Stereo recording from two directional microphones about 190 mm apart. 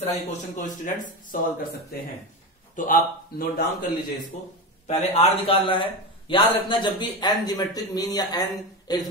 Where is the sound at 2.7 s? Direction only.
45° left (ahead or behind).